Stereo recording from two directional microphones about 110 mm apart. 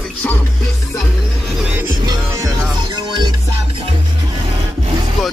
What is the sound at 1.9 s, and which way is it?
Music, 35° right (ahead or behind).